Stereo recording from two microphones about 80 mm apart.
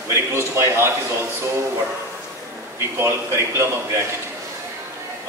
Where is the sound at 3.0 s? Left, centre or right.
Right.